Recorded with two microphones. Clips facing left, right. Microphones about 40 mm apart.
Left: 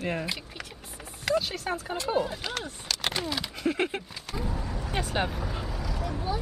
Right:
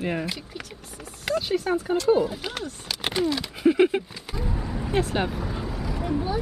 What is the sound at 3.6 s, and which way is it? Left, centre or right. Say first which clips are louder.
Speech: right 10 dB; centre.